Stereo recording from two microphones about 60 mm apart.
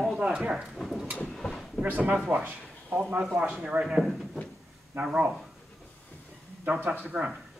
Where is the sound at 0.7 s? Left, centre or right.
Centre.